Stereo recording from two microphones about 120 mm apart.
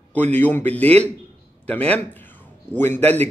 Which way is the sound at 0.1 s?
15° left (ahead or behind).